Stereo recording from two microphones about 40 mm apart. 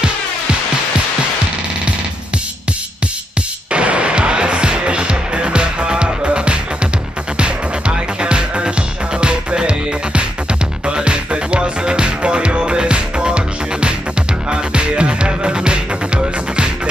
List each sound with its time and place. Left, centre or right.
3.7 s music: right